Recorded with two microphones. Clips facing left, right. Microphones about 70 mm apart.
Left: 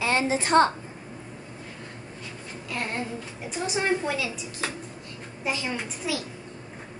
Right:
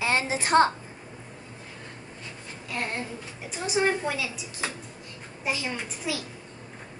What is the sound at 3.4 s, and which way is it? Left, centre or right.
A woman's voice, centre.